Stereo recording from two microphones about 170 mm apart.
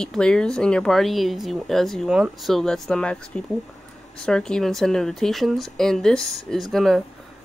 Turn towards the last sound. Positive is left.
turn(degrees=0)  # may be behind; listen again after turning